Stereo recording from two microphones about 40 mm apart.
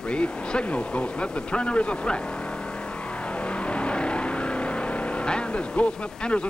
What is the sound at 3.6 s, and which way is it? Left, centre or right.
Vehicle, left.